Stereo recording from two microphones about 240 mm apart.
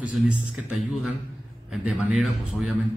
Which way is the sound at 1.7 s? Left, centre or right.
Centre.